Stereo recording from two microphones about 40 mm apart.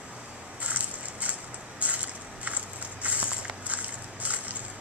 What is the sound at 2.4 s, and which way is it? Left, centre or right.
Walk, right.